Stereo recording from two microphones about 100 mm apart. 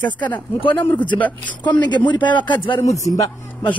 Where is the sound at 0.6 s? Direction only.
60° left (ahead or behind).